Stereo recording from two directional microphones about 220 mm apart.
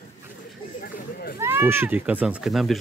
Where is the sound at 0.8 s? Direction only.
40° left (ahead or behind).